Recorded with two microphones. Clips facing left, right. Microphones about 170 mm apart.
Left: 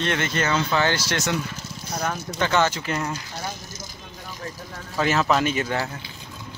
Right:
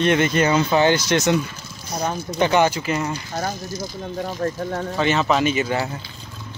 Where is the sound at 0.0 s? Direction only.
15° right (ahead or behind).